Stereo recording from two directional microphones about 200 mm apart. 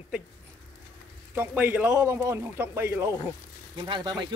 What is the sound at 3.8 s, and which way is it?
Speech, 25° right (ahead or behind).